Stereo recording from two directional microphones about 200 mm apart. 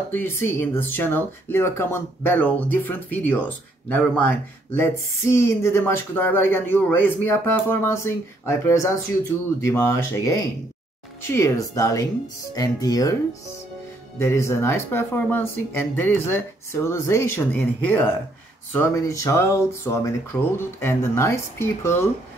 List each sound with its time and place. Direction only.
0.1 s speech: 10° left (ahead or behind)